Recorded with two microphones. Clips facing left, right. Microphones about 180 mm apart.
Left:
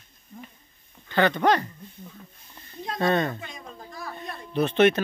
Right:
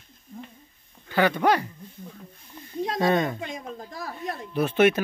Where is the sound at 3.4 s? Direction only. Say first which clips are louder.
Right 7 dB; 90° right.